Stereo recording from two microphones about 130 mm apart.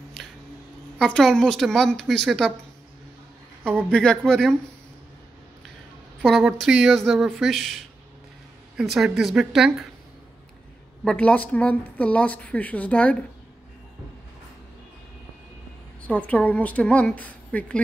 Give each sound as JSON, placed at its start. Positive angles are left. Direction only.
{"t": 0.2, "sound": "music", "side_deg": 0}
{"t": 0.9, "sound": "a woman's voice", "side_deg": 5}
{"t": 3.9, "sound": "a woman's voice", "side_deg": 5}
{"t": 6.2, "sound": "a woman's voice", "side_deg": 0}
{"t": 11.1, "sound": "speech", "side_deg": 10}
{"t": 16.1, "sound": "speech", "side_deg": 10}